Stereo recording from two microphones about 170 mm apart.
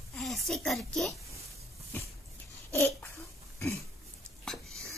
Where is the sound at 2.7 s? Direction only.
15° left (ahead or behind).